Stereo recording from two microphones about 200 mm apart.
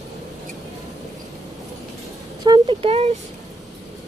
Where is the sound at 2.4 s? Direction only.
25° right (ahead or behind).